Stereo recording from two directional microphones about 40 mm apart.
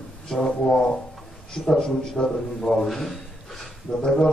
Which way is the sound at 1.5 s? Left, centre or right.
Centre.